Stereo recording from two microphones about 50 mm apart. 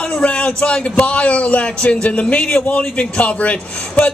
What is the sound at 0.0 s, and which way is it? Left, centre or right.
A man's voice, centre.